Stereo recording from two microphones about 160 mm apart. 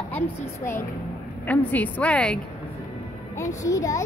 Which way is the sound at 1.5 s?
10° left (ahead or behind).